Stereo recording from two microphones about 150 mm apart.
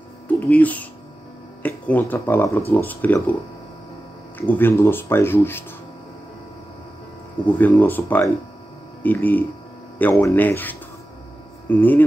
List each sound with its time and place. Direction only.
0.5 s speech: 10° left (ahead or behind)
4.4 s speech: 15° left (ahead or behind)
7.4 s speech: 10° left (ahead or behind)